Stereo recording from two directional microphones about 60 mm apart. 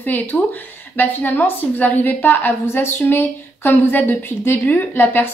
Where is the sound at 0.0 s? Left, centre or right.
Left.